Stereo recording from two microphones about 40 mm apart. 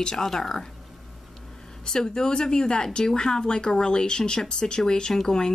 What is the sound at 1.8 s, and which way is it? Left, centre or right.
Speech, centre.